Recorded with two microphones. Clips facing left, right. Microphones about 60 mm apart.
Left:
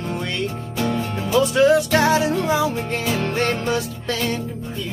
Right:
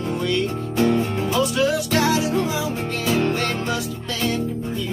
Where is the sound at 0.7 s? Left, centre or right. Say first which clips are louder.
Right 5 dB; right.